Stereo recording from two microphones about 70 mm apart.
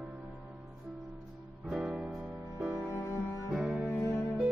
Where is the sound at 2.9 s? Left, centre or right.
Left.